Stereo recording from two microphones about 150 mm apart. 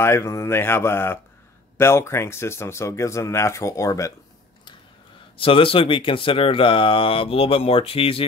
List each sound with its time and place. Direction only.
0.0 s speech: 20° left (ahead or behind)
5.4 s speech: 35° left (ahead or behind)